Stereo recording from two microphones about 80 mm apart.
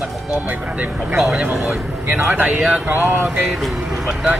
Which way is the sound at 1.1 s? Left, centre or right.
Centre.